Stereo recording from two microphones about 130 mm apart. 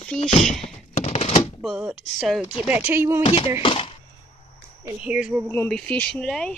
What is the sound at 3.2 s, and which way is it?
Speech, 45° left (ahead or behind).